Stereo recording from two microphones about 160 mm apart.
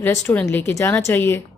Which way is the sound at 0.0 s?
10° left (ahead or behind).